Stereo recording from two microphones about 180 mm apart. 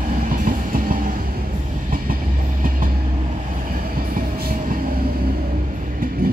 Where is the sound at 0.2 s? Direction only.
50° right (ahead or behind).